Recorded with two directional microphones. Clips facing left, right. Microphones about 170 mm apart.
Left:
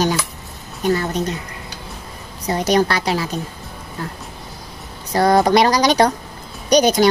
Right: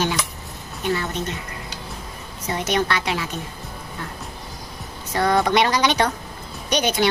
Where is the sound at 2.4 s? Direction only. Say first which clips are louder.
Left 6 dB; 35° left (ahead or behind).